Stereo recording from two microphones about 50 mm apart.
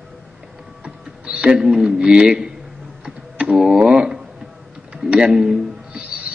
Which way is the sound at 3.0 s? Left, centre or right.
Right.